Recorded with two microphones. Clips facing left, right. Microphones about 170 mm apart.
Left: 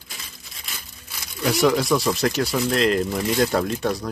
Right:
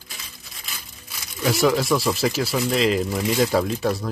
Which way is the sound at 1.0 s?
Centre (ahead or behind).